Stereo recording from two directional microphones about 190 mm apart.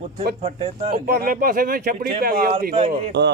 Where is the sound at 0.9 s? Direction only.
50° right (ahead or behind).